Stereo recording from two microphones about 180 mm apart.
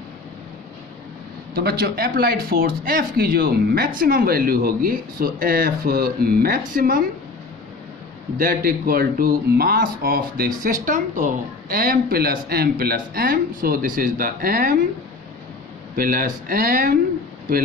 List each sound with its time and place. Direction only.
1.5 s speech: 60° right (ahead or behind)
8.4 s speech: 55° right (ahead or behind)
16.0 s speech: 55° right (ahead or behind)